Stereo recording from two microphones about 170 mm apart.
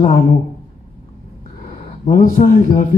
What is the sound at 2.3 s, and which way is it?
Speech, 45° left (ahead or behind).